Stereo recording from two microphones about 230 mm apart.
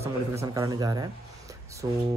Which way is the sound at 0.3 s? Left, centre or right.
Centre.